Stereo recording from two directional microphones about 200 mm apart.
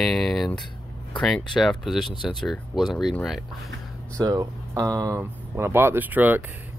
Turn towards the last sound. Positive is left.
turn(degrees=-10)  # may be behind; listen again after turning